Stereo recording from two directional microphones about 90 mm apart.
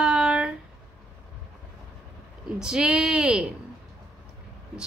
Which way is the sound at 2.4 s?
10° right (ahead or behind).